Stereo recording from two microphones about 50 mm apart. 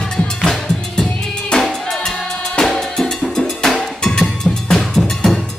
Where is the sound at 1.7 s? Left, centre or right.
Centre.